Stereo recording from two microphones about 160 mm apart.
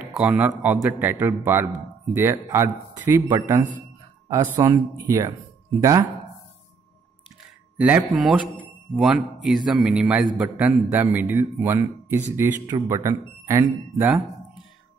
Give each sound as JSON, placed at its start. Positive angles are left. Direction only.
{"t": 0.0, "sound": "a sound", "side_deg": -5}
{"t": 0.6, "sound": "a man's voice", "side_deg": -10}
{"t": 7.7, "sound": "a man's voice", "side_deg": -10}